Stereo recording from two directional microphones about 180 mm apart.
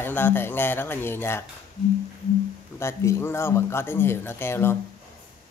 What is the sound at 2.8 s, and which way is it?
Speech, 15° left (ahead or behind).